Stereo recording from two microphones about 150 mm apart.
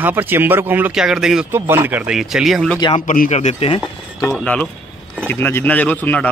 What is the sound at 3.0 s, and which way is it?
Speech, 60° left (ahead or behind).